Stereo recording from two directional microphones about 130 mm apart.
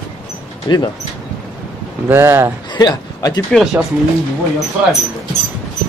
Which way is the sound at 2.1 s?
20° right (ahead or behind).